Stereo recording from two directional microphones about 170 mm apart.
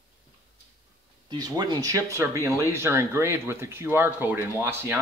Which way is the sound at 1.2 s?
25° right (ahead or behind).